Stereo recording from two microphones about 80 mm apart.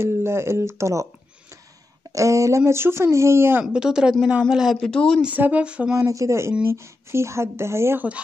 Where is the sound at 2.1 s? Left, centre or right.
Right.